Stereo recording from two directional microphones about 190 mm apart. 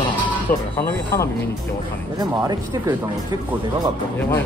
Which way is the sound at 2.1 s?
20° right (ahead or behind).